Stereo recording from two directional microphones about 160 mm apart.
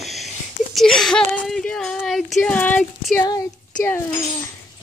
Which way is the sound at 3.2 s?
20° left (ahead or behind).